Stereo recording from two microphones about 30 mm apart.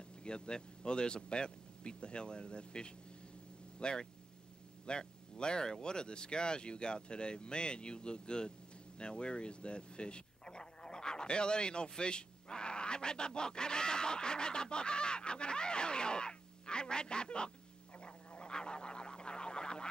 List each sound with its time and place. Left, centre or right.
0.2 s speech: left
18.0 s frog: left